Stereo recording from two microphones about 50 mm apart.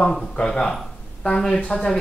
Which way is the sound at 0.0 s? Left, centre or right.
Centre.